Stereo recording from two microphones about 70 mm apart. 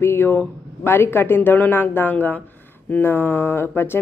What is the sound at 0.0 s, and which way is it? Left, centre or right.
Speech, left.